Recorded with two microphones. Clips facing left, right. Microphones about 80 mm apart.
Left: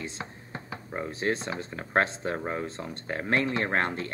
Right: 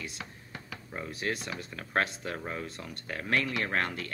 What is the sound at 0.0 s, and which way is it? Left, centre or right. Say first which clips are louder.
Speech: left 4 dB; left.